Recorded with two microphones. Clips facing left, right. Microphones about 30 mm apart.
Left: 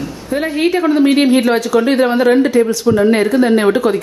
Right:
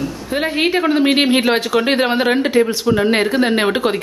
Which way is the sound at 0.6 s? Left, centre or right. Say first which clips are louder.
Left 3 dB; right.